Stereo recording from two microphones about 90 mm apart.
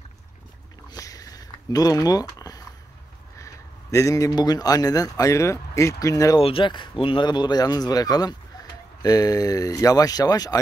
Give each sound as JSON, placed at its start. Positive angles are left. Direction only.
{"t": 0.8, "sound": "a sound", "side_deg": 40}
{"t": 3.3, "sound": "a man's voice", "side_deg": 35}
{"t": 6.4, "sound": "speech", "side_deg": 75}
{"t": 7.2, "sound": "speech", "side_deg": 55}